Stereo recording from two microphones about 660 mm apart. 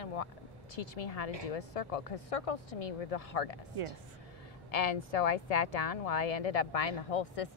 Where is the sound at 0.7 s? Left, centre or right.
Left.